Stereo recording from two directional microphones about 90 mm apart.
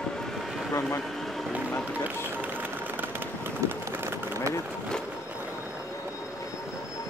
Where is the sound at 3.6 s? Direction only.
35° right (ahead or behind).